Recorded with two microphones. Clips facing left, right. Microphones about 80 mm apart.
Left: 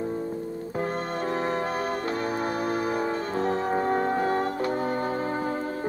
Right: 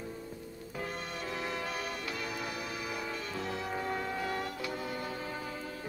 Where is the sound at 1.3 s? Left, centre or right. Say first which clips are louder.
Left 9 dB; left.